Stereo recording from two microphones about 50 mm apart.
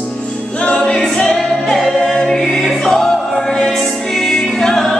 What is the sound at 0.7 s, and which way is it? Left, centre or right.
Choir, left.